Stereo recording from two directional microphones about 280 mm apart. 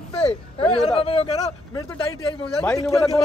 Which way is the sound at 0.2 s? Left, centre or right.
Centre.